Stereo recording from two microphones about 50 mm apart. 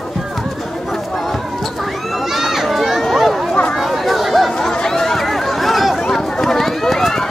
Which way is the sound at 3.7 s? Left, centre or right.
Centre.